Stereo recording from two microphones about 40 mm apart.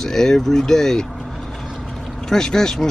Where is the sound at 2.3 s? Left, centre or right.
Centre.